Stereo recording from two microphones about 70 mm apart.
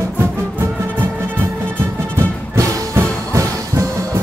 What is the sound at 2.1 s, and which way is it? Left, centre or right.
Music, right.